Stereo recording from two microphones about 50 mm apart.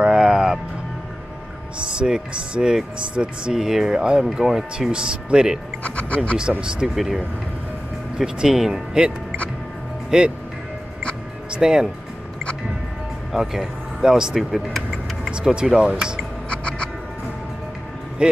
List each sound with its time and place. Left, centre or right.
0.0 s music: centre
2.0 s speech: centre
5.9 s speech: left
7.0 s speech: centre
10.1 s speech: centre
11.5 s speech: centre
13.3 s speech: centre
16.4 s a sound: left
18.2 s speech: centre